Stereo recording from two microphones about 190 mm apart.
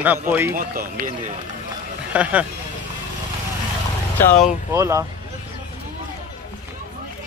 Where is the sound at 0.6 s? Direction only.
45° right (ahead or behind).